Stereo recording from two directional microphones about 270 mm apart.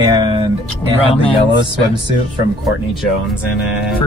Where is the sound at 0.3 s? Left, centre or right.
Centre.